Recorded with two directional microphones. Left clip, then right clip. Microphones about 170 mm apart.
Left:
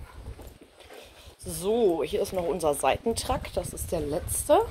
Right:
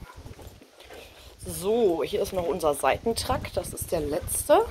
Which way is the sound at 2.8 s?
20° left (ahead or behind).